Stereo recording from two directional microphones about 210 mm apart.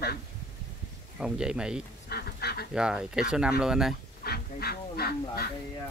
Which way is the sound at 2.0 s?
50° left (ahead or behind).